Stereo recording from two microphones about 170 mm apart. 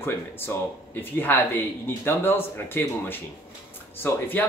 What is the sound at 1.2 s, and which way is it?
Speech, 10° left (ahead or behind).